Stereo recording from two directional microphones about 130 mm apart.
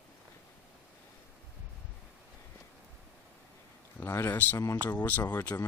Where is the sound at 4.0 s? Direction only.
20° left (ahead or behind).